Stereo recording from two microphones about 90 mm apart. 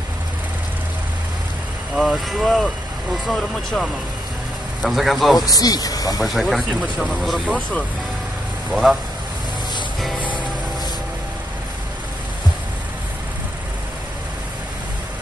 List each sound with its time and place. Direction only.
2.0 s speech: centre (ahead or behind)
5.5 s speech: 45° left (ahead or behind)
6.2 s speech: centre (ahead or behind)
8.8 s speech: centre (ahead or behind)